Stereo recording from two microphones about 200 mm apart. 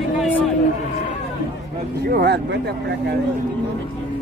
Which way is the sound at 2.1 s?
55° right (ahead or behind).